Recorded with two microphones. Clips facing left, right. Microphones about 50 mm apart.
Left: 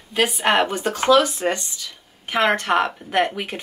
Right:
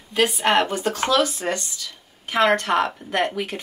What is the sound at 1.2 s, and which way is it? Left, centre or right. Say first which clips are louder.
Speech: left 2 dB; centre.